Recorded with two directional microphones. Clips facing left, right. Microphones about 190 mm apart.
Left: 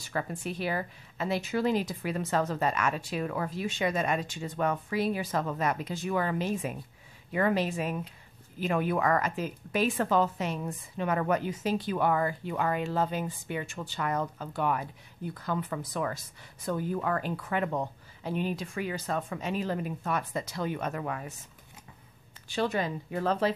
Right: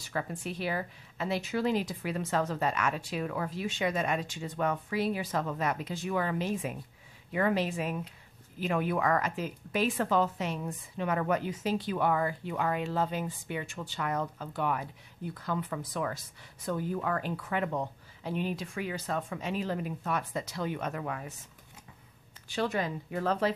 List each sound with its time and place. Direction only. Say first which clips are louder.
0.1 s a woman's voice: left 2 dB; 45° left (ahead or behind)
22.5 s speech: left 2 dB; 30° left (ahead or behind)